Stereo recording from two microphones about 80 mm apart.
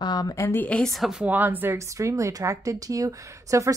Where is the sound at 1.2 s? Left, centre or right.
Right.